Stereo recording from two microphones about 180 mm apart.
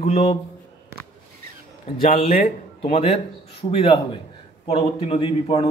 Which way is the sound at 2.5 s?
35° left (ahead or behind).